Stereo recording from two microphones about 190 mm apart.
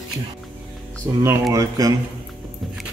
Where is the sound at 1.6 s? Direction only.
20° right (ahead or behind).